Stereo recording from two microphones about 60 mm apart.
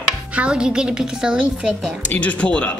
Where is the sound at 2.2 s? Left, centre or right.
Left.